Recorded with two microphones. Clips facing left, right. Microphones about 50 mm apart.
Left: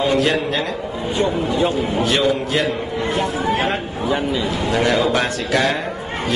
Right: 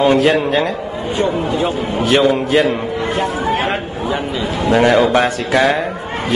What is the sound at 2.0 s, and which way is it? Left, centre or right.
A man's voice, right.